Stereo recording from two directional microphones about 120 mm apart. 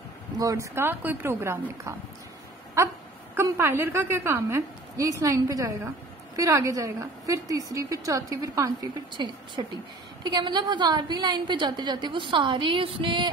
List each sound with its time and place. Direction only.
0.4 s a woman's voice: 25° right (ahead or behind)
9.1 s a woman's voice: 40° right (ahead or behind)